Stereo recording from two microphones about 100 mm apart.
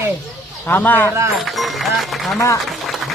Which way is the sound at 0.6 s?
20° left (ahead or behind).